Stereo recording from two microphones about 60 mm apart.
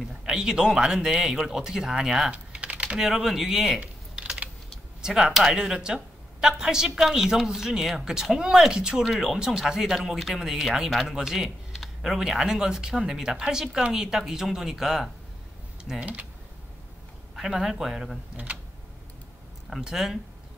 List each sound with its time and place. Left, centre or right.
0.1 s a woman's voice: centre
2.3 s typing: right
3.0 s speech: centre
3.8 s typing: centre
5.0 s a woman's voice: centre
16.0 s speech: right
17.4 s speech: centre
18.3 s speech: right
19.8 s a woman's voice: centre